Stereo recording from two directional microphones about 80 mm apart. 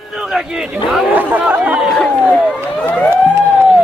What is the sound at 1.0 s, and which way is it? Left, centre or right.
Chatter, centre.